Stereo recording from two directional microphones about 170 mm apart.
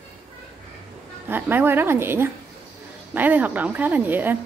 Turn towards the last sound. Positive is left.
turn(degrees=-10)  # may be behind; listen again after turning